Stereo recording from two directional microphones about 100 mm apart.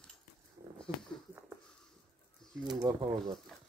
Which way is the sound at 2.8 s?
45° right (ahead or behind).